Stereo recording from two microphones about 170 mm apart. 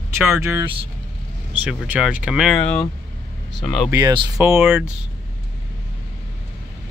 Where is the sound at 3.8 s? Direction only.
20° right (ahead or behind).